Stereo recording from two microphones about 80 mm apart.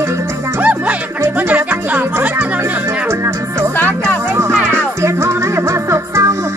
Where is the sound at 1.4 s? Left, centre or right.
Right.